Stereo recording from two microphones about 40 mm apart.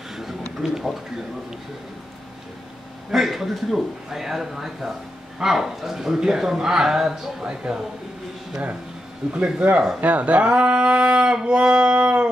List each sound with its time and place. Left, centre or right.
0.6 s speech: centre
3.1 s speech: centre; by 7.8 s right
9.4 s speech: right
9.9 s speech: right